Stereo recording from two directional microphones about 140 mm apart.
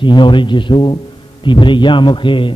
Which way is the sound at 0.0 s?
35° left (ahead or behind).